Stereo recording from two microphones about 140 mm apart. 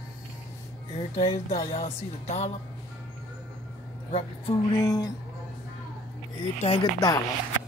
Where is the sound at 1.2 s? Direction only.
50° left (ahead or behind).